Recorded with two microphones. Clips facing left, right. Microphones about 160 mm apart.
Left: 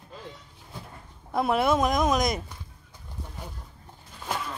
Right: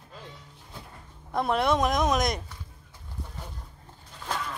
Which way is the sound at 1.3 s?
5° left (ahead or behind).